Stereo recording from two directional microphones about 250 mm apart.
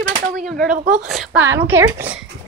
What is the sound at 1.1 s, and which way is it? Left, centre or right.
Speech, centre.